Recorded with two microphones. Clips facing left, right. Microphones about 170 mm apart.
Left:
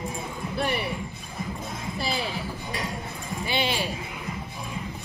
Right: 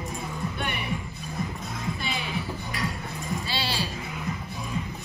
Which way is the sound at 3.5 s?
15° left (ahead or behind).